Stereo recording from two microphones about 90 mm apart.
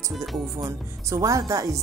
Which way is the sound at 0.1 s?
Centre (ahead or behind).